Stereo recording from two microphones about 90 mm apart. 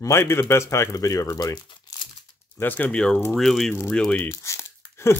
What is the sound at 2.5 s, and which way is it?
Speech, 20° left (ahead or behind).